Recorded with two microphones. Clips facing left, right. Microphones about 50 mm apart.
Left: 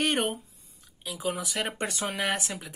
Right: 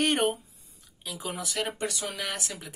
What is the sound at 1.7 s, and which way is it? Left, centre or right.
Speech, left.